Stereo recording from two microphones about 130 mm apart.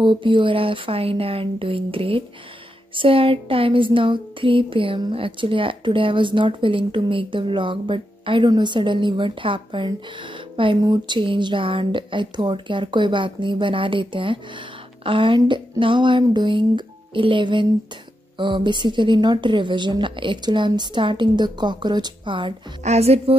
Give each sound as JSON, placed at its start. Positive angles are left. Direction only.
{"t": 0.0, "sound": "speech", "side_deg": -40}
{"t": 22.8, "sound": "speech", "side_deg": -55}